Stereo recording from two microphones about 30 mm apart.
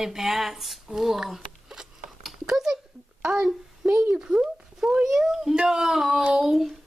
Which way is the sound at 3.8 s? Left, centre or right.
Right.